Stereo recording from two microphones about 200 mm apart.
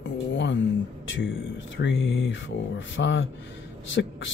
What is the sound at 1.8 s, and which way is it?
Speech, 70° left (ahead or behind).